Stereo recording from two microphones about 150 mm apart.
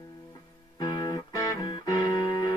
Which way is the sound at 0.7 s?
30° left (ahead or behind).